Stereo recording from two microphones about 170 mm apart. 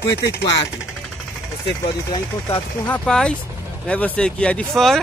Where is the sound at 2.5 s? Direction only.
5° left (ahead or behind).